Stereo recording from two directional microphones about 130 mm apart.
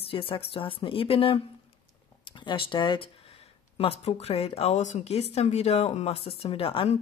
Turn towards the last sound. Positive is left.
turn(degrees=45)  # may be behind; listen again after turning